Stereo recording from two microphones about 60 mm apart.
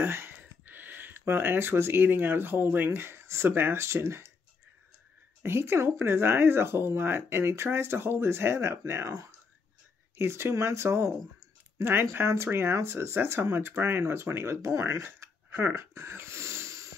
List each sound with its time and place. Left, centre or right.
0.0 s speech: right
5.4 s speech: right
10.1 s speech: right